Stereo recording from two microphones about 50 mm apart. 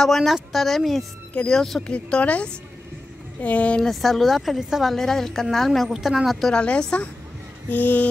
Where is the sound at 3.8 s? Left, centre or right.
Centre.